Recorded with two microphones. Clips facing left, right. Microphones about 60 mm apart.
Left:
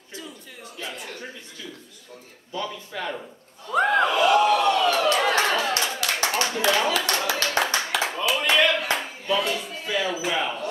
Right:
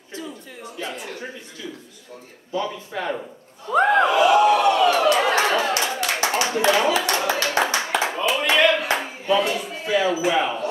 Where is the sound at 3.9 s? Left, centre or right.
Centre.